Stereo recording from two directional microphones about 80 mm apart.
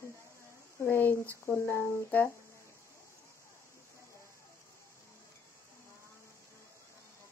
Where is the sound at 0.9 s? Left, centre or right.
Left.